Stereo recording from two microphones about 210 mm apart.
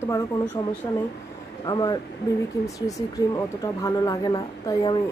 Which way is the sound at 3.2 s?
15° left (ahead or behind).